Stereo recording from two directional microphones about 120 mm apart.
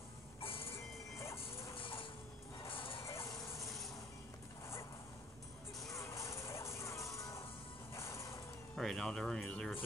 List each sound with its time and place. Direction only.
0.4 s vehicle: 50° left (ahead or behind)
1.8 s mechanisms: 45° left (ahead or behind)
2.7 s music: 45° left (ahead or behind)
3.1 s music: 25° left (ahead or behind)
3.5 s train: centre (ahead or behind)
5.8 s music: centre (ahead or behind)
6.0 s music: 25° left (ahead or behind)
8.7 s speech: centre (ahead or behind)